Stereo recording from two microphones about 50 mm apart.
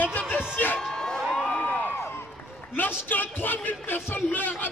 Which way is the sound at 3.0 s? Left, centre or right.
Left.